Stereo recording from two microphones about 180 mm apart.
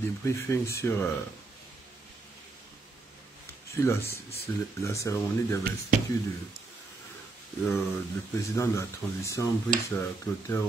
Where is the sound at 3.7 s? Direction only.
15° left (ahead or behind).